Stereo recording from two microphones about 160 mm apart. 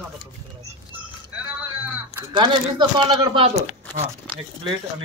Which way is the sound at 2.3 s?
30° right (ahead or behind).